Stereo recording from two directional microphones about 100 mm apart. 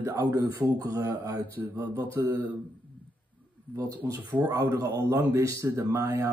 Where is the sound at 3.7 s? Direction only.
35° right (ahead or behind).